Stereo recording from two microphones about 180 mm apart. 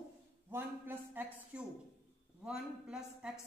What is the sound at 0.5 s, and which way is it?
A woman's voice, 10° right (ahead or behind).